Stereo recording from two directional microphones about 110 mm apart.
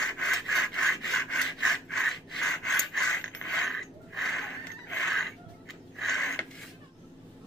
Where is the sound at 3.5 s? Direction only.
Centre (ahead or behind).